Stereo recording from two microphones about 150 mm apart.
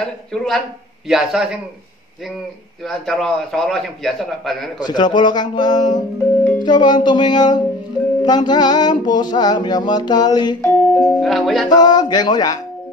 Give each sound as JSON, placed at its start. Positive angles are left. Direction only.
{"t": 0.0, "sound": "a man's voice", "side_deg": 5}
{"t": 2.8, "sound": "a man's voice", "side_deg": 0}
{"t": 4.8, "sound": "music", "side_deg": 30}
{"t": 10.6, "sound": "a man's voice", "side_deg": 10}
{"t": 11.7, "sound": "music", "side_deg": 25}